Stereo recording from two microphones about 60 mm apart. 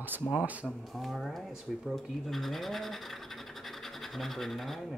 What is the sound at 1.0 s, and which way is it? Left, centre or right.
Speech, centre.